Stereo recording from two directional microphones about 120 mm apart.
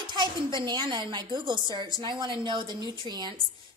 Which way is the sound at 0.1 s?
40° right (ahead or behind).